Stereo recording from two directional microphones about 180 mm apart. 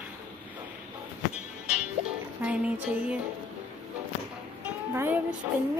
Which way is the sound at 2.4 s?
10° right (ahead or behind).